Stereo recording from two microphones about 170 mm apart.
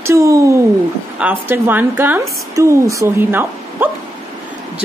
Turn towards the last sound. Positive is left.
turn(degrees=-15)  # may be behind; listen again after turning